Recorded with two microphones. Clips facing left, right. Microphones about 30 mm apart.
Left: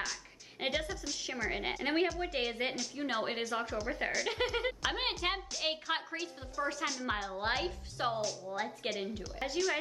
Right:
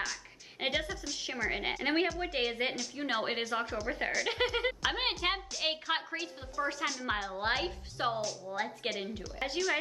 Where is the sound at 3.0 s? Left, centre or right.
Centre.